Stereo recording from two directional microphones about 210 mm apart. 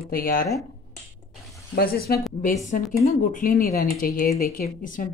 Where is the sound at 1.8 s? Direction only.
45° left (ahead or behind).